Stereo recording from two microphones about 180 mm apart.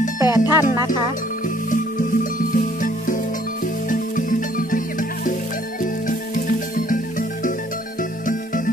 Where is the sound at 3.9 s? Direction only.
45° left (ahead or behind).